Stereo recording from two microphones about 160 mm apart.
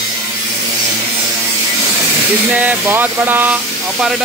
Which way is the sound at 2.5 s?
10° right (ahead or behind).